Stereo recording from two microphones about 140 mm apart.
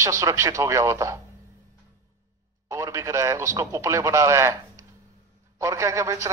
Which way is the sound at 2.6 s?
20° right (ahead or behind).